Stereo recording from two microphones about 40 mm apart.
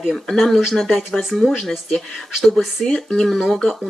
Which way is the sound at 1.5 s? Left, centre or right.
Centre.